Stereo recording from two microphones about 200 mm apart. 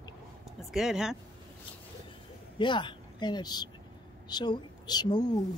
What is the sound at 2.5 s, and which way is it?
A woman's voice, 25° left (ahead or behind).